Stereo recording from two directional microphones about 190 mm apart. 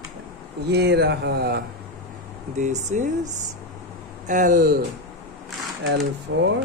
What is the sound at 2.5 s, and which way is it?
Speech, 40° right (ahead or behind).